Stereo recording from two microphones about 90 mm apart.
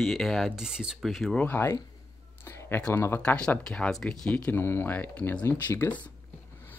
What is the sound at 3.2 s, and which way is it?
Speech, 15° left (ahead or behind).